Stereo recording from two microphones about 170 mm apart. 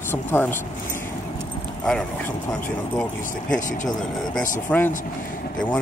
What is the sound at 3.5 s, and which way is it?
Speech, 50° left (ahead or behind).